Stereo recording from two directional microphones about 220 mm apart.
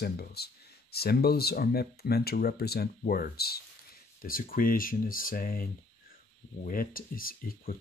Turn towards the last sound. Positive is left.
turn(degrees=40)  # may be behind; listen again after turning